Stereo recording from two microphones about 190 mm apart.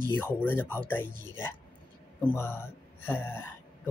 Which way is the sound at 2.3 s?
15° left (ahead or behind).